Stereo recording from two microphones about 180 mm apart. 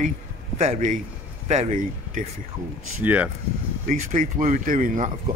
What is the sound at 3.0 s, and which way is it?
Speech, 10° right (ahead or behind).